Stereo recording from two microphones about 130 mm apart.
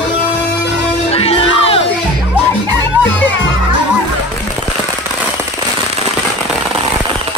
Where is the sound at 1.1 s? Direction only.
50° left (ahead or behind).